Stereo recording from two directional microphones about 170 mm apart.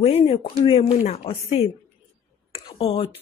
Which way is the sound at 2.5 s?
30° left (ahead or behind).